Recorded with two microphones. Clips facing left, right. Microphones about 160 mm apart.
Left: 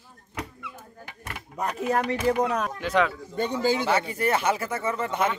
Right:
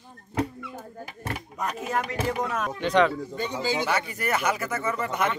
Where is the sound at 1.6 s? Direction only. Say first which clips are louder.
Left 4 dB; 35° left (ahead or behind).